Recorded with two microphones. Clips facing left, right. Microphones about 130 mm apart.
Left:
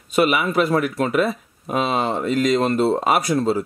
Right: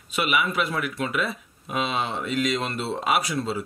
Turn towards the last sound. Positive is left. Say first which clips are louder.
# left 6 dB
turn(degrees=45)  # may be behind; listen again after turning